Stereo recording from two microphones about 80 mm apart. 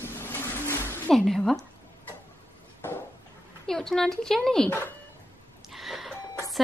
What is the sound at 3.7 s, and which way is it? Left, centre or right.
Speech, centre.